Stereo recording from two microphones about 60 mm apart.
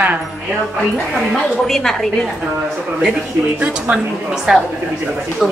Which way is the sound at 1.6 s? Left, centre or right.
Centre.